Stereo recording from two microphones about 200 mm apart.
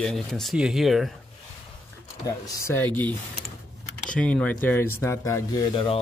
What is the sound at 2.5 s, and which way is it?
Speech, 15° left (ahead or behind).